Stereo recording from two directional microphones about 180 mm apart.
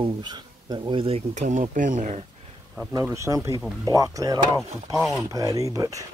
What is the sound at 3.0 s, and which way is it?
Speech, 15° right (ahead or behind).